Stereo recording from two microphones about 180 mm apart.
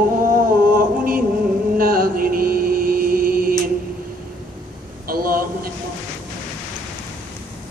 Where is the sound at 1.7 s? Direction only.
55° right (ahead or behind).